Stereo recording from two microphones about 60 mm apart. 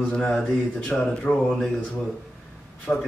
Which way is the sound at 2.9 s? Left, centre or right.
Left.